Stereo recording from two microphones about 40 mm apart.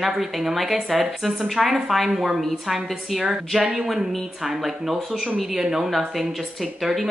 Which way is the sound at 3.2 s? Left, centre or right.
Centre.